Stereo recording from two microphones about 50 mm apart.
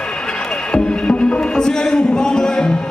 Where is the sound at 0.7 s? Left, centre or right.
Centre.